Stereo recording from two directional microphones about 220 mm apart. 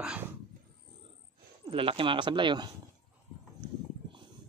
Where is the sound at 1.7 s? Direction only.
25° right (ahead or behind).